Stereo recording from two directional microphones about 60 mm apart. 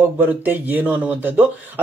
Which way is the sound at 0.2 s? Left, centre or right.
Right.